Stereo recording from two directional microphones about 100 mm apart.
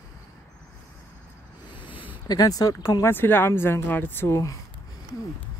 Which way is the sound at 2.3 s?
40° left (ahead or behind).